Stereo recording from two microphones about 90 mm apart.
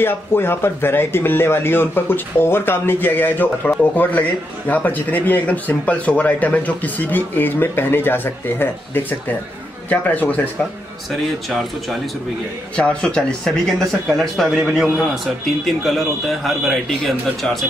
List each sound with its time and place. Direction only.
0.0 s a man's voice: 25° left (ahead or behind)
11.1 s a man's voice: centre (ahead or behind)
12.7 s a man's voice: 10° left (ahead or behind)